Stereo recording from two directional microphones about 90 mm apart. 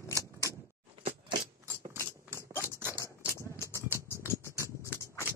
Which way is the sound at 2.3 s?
30° left (ahead or behind).